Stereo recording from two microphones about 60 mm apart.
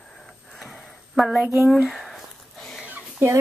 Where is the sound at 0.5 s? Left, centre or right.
Centre.